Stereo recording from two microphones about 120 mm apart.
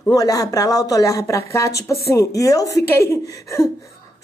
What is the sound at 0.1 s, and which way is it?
Speech, 30° left (ahead or behind).